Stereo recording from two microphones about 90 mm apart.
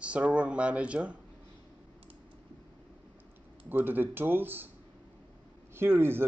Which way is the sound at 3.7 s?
20° right (ahead or behind).